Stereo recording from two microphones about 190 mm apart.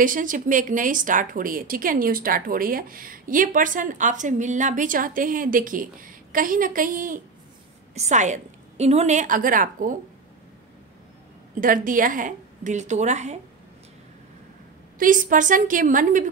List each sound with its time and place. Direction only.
0.0 s a woman's voice: 45° right (ahead or behind)
11.6 s a woman's voice: 45° right (ahead or behind)
15.0 s a woman's voice: 45° right (ahead or behind)